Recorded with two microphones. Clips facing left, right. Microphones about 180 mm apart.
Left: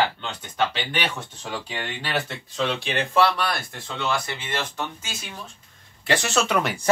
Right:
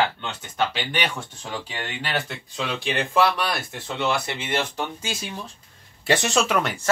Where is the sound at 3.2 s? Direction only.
15° right (ahead or behind).